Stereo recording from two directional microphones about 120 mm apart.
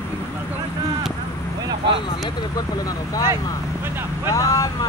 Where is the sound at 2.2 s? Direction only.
35° left (ahead or behind).